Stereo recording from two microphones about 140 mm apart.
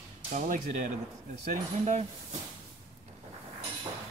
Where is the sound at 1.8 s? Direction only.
50° right (ahead or behind).